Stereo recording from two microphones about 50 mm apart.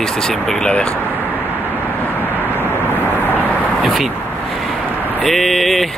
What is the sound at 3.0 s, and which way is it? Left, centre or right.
Vehicle, left.